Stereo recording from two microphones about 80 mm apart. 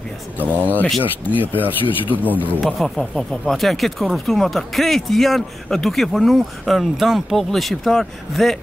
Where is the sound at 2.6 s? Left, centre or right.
Centre.